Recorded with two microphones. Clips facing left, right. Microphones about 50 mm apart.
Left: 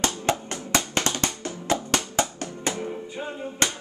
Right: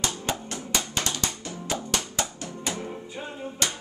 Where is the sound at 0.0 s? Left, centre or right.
Left.